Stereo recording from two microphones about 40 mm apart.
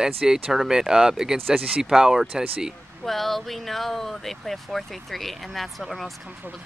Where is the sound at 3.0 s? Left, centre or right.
Centre.